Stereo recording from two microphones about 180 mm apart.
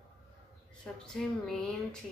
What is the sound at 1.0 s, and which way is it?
Speech, 5° left (ahead or behind).